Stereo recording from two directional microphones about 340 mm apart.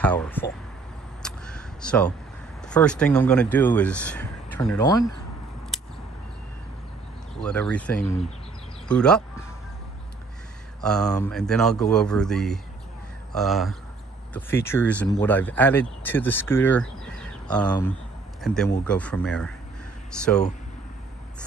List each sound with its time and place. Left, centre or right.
0.0 s speech: centre
1.2 s a sound: centre
2.7 s speech: centre
7.3 s speech: centre
10.8 s speech: centre